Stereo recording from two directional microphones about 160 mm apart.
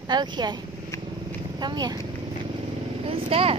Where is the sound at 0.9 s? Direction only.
20° left (ahead or behind).